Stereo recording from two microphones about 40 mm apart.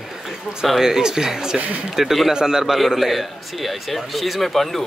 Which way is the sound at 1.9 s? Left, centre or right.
Centre.